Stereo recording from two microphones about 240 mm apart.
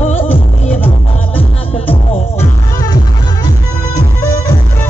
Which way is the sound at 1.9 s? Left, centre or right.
Left.